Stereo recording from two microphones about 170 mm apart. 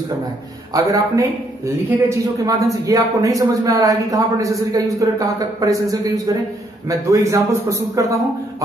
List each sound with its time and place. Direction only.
0.7 s a man's voice: 20° right (ahead or behind)